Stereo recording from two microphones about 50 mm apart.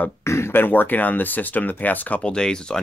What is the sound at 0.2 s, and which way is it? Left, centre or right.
Throat clearing, left.